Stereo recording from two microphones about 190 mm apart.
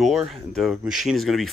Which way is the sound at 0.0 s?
Centre (ahead or behind).